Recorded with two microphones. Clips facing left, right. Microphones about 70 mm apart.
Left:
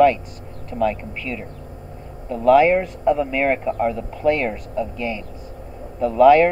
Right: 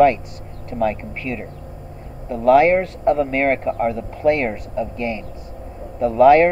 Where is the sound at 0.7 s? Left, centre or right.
Centre.